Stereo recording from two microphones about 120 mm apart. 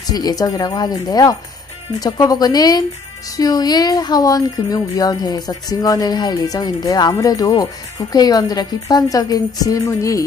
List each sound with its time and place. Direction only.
0.1 s speech: 30° left (ahead or behind)